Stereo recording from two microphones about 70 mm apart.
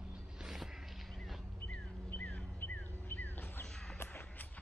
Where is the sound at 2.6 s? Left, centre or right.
Left.